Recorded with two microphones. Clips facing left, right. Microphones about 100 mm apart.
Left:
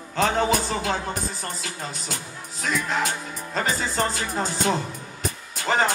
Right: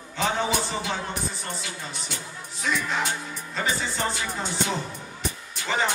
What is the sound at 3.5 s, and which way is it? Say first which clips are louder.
Speech: left 3 dB; 45° left (ahead or behind).